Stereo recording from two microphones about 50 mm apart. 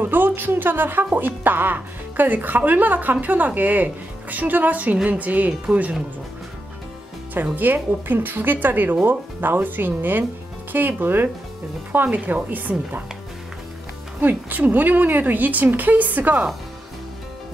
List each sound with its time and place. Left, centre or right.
0.0 s a woman's voice: right
7.5 s a woman's voice: right
12.2 s speech: right
12.4 s a woman's voice: right
14.2 s a woman's voice: right